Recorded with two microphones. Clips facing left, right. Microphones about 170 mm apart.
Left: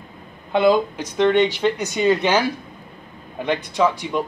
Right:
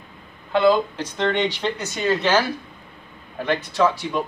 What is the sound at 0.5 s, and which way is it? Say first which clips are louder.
Speech: left 1 dB; 15° left (ahead or behind).